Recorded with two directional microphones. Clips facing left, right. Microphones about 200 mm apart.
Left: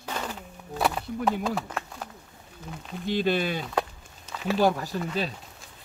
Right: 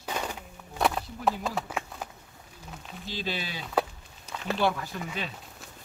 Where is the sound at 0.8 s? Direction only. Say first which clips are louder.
Left 1 dB; centre (ahead or behind).